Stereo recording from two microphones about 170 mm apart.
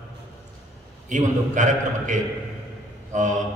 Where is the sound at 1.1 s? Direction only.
45° right (ahead or behind).